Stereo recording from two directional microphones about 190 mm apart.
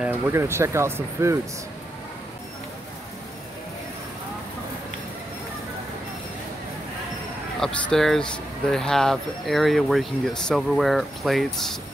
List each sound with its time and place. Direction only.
0.0 s speech: 15° right (ahead or behind)
7.6 s speech: centre (ahead or behind)